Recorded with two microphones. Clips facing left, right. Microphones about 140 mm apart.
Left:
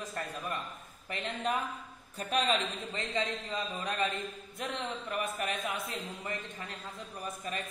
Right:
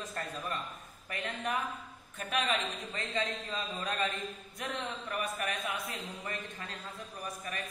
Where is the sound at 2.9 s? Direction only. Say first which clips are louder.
Left 1 dB; 20° left (ahead or behind).